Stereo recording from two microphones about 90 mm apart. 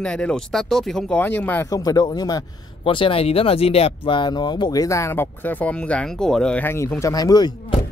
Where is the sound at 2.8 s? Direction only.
80° left; by 4.8 s 50° left (ahead or behind).